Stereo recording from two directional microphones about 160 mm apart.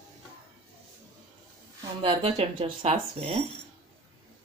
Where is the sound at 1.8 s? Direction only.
35° right (ahead or behind).